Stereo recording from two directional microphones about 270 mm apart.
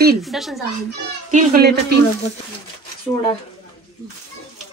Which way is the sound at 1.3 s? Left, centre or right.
Right.